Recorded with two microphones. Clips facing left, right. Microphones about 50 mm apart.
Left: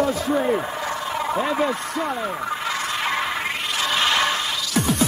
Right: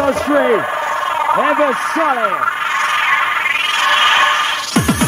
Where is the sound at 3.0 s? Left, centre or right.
Right.